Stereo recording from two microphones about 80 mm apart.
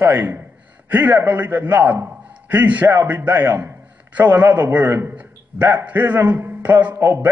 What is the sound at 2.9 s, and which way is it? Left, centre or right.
A man's voice, right.